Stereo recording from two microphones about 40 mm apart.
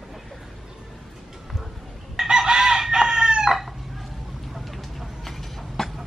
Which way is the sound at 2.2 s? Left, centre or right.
Centre.